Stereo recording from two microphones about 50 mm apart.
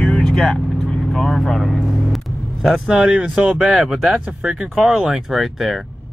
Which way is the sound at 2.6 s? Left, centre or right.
Centre.